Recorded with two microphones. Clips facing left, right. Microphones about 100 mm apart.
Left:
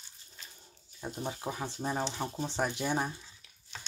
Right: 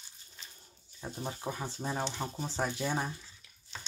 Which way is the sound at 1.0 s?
10° left (ahead or behind).